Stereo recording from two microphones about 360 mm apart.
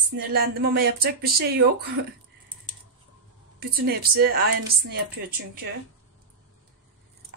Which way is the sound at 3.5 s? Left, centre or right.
Right.